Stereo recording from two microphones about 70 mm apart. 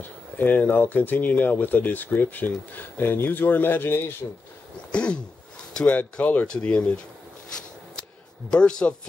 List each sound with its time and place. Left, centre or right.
0.0 s speech: left
4.9 s a sound: centre
5.9 s speech: left
8.5 s speech: centre